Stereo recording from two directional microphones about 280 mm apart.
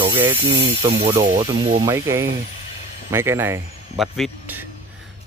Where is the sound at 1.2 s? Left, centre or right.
Right.